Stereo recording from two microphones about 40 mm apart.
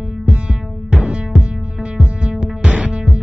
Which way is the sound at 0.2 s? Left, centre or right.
Right.